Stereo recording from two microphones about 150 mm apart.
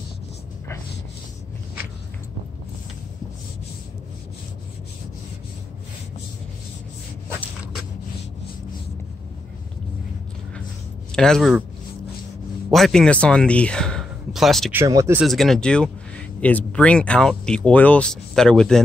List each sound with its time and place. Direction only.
11.1 s speech: 5° left (ahead or behind)
12.7 s speech: 5° left (ahead or behind)
14.7 s speech: 20° right (ahead or behind)
15.2 s speech: centre (ahead or behind)